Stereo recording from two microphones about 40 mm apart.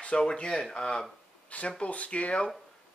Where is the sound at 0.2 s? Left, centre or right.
Left.